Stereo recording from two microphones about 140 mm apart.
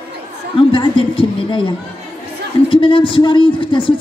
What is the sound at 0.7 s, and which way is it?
Speech, 35° left (ahead or behind).